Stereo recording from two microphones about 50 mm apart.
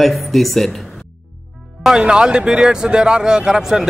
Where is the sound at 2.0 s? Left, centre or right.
Centre.